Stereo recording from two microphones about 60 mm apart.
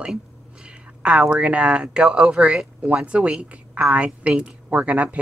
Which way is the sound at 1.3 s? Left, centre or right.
Right.